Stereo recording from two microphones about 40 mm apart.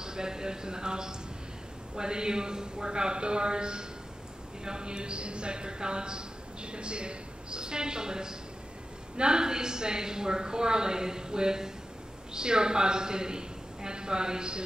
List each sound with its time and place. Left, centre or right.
0.0 s speech: centre